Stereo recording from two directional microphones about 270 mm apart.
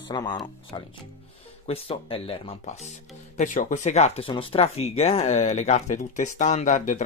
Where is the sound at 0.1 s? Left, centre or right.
Centre.